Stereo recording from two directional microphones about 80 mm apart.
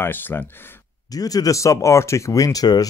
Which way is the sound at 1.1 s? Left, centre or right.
Left.